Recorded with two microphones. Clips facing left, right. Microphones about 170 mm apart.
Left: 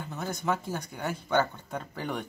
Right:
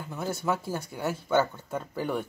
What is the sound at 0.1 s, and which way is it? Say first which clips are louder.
Speech: right 2 dB; 5° right (ahead or behind).